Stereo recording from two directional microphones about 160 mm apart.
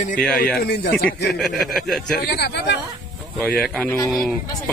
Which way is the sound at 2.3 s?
85° left.